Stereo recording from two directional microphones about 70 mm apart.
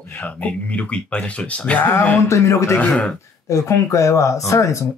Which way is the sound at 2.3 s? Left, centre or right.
Left.